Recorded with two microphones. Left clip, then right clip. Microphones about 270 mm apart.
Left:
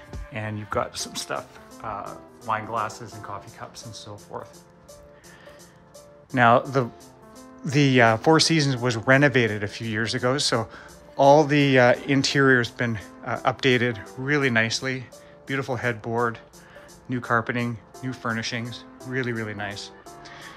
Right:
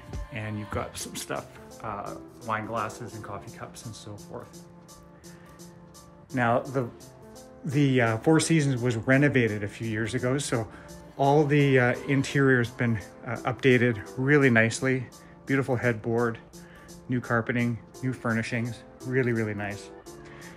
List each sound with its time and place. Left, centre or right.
0.3 s speech: centre
6.3 s speech: left
7.6 s speech: centre